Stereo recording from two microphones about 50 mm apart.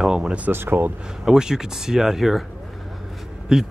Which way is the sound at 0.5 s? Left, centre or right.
Right.